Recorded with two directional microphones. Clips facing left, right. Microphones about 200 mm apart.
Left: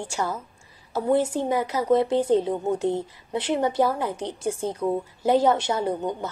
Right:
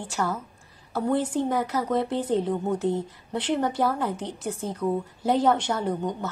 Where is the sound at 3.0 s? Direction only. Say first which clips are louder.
Left 1 dB; 10° left (ahead or behind).